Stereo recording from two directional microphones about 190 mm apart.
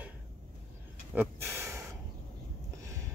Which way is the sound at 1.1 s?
5° right (ahead or behind).